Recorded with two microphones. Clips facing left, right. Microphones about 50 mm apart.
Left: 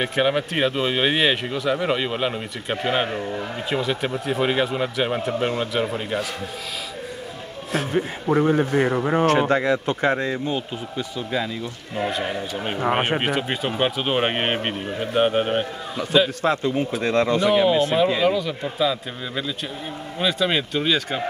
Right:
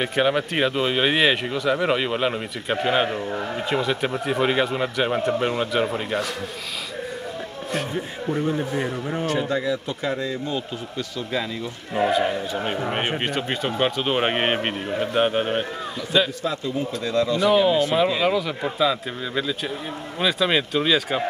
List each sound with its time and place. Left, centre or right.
0.0 s speech: centre
7.9 s speech: left
12.1 s speech: centre
16.4 s speech: left
17.5 s speech: centre
18.2 s speech: centre